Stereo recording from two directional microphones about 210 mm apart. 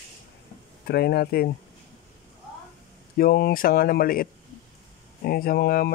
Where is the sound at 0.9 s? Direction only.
50° left (ahead or behind).